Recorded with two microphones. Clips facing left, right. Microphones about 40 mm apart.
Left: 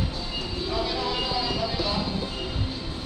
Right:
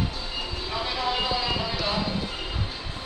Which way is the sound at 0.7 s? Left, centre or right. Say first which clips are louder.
Even; right.